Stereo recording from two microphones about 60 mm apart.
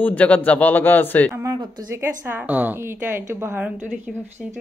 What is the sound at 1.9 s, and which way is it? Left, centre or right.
A man's voice, right.